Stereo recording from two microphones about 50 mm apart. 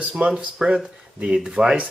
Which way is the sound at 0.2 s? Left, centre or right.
Right.